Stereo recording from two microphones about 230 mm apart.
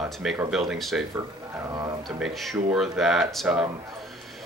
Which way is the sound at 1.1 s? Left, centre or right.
Centre.